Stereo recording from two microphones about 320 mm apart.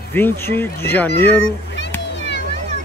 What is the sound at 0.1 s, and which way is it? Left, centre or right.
Speech, centre.